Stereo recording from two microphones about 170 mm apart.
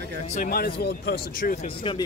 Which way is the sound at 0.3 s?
55° left (ahead or behind).